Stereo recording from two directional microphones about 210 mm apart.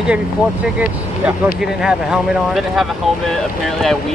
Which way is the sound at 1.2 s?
5° right (ahead or behind).